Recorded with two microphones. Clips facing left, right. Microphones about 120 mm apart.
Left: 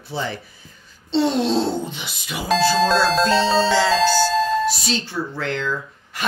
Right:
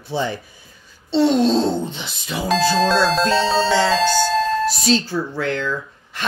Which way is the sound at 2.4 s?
Centre (ahead or behind).